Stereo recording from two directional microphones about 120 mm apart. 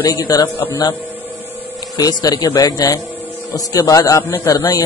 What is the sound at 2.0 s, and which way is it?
Speech, 35° left (ahead or behind).